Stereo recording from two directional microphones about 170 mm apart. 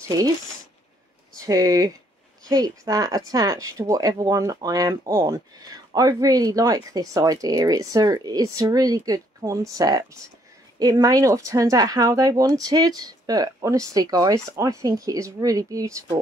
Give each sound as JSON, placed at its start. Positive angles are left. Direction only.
{"t": 1.4, "sound": "speech", "side_deg": -20}